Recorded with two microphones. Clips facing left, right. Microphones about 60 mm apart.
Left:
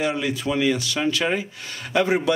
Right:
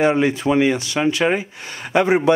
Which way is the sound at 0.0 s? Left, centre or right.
Right.